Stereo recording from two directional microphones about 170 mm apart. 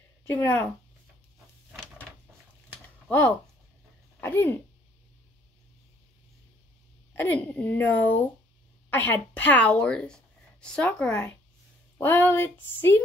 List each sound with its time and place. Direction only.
0.3 s speech: 15° left (ahead or behind)
3.1 s speech: 10° left (ahead or behind)
7.4 s speech: 10° left (ahead or behind)